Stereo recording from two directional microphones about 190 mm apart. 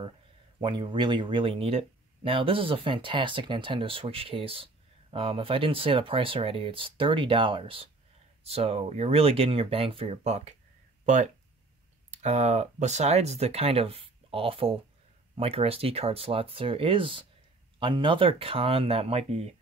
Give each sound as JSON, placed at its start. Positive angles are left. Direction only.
{"t": 0.6, "sound": "speech", "side_deg": -25}
{"t": 12.1, "sound": "speech", "side_deg": -35}